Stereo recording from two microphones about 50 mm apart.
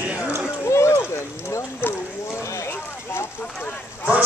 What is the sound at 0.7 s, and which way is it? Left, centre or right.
Speech, left.